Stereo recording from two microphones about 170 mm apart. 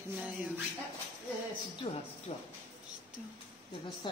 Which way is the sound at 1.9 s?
40° left (ahead or behind).